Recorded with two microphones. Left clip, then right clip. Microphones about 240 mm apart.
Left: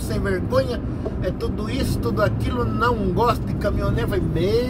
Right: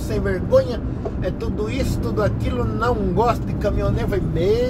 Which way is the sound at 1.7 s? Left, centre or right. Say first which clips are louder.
Even; centre.